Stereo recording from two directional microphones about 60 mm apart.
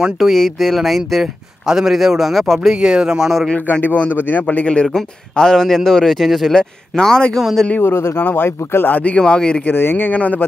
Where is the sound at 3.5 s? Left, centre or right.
Left.